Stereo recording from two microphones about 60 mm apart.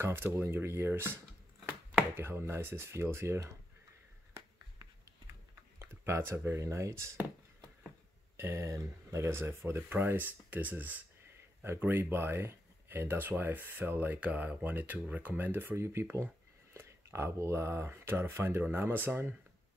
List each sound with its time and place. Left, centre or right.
0.0 s speech: right
5.8 s speech: right
8.4 s speech: right
8.6 s speech: right
12.0 s speech: right
14.2 s speech: right
15.7 s speech: right